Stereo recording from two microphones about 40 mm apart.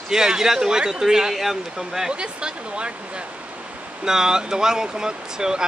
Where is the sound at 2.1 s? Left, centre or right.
Right.